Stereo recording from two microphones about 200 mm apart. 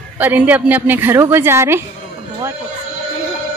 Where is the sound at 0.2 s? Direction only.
10° right (ahead or behind).